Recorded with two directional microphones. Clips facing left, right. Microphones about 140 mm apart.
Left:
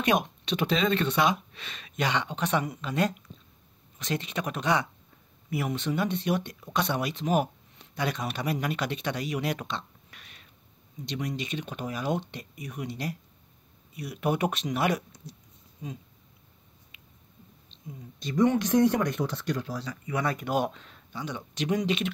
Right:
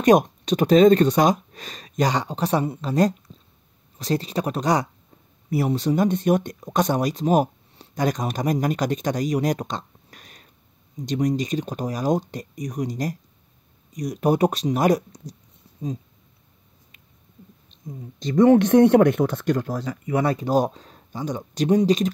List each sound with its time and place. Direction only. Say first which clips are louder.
0.0 s speech: right 10 dB; 40° right (ahead or behind)
16.9 s squish: even; 45° right (ahead or behind)
18.3 s speech: right 9 dB; 55° right (ahead or behind)
20.1 s speech: right 7 dB; 30° right (ahead or behind)